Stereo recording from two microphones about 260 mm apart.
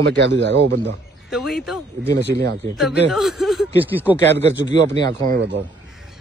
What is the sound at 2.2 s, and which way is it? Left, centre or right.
Speech, right.